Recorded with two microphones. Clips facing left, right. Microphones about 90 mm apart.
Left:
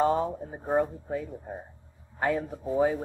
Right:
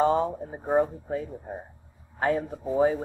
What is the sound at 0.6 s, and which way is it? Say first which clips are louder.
Speech: right 3 dB; 15° right (ahead or behind).